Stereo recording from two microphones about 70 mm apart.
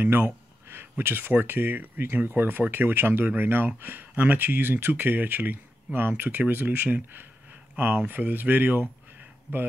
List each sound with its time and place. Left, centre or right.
0.0 s speech: right